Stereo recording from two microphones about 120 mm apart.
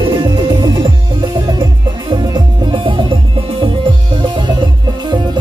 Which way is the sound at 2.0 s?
45° right (ahead or behind).